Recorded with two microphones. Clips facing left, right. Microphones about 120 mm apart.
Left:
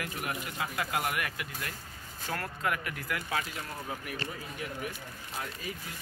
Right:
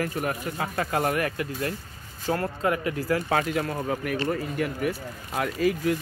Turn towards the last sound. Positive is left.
turn(degrees=-75)  # may be behind; listen again after turning